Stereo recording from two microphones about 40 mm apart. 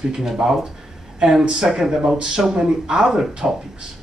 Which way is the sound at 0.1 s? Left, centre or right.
Centre.